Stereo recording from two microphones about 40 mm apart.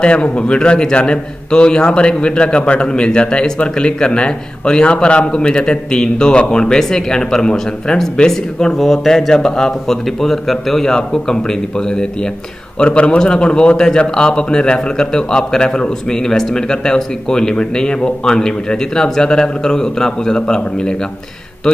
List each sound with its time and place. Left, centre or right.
0.0 s a man's voice: left
8.7 s a man's voice: centre; by 20.9 s left